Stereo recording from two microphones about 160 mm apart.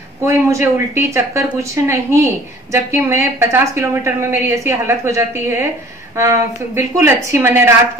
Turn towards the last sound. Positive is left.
turn(degrees=-15)  # may be behind; listen again after turning